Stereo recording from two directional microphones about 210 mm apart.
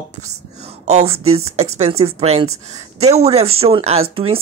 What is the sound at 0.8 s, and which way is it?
Speech, 30° right (ahead or behind).